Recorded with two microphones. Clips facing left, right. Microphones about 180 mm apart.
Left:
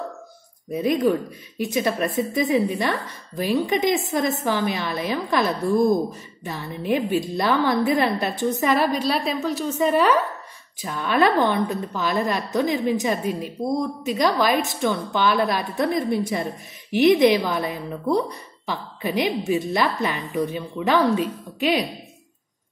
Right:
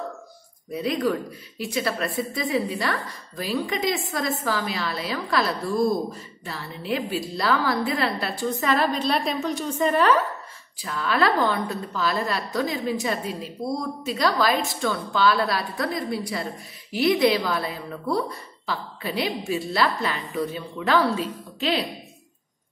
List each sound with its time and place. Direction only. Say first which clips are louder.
0.7 s a woman's voice: left 4 dB; 20° left (ahead or behind)